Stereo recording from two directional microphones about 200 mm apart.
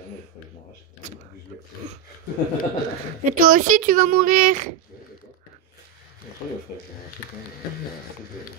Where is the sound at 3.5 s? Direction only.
40° right (ahead or behind).